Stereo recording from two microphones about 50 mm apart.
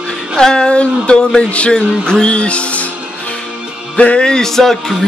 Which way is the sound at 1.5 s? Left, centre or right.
Left.